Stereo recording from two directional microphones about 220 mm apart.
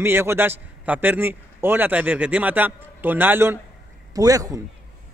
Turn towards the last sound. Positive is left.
turn(degrees=-15)  # may be behind; listen again after turning